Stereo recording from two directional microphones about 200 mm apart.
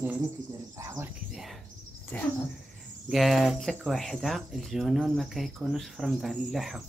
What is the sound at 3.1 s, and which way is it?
Speech, centre (ahead or behind).